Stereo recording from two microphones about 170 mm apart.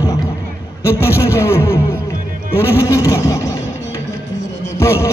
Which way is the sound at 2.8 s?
20° left (ahead or behind).